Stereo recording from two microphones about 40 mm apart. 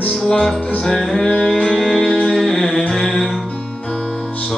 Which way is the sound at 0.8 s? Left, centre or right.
Centre.